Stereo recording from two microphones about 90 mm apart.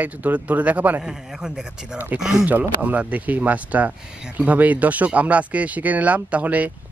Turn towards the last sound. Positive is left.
turn(degrees=-15)  # may be behind; listen again after turning